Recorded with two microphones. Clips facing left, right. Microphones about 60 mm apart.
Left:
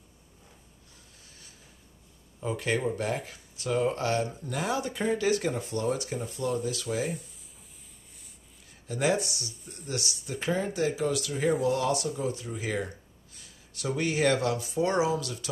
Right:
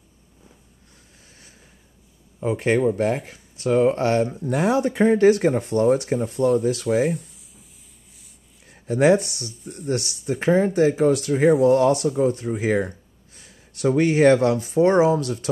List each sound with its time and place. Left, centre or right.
2.4 s speech: right
8.6 s speech: right